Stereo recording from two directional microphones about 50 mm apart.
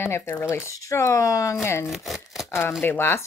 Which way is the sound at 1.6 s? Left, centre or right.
Left.